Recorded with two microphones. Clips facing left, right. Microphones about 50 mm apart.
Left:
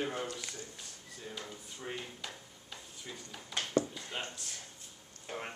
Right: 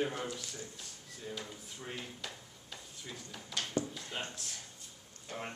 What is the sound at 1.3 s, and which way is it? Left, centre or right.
Speech, centre.